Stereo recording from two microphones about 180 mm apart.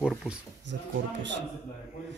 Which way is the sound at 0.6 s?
80° right.